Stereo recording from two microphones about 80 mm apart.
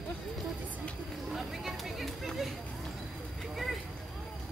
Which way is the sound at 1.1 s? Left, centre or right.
Centre.